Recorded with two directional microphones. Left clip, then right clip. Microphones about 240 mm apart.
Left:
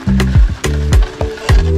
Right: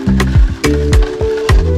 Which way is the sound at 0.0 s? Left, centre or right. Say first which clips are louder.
Right 2 dB; centre.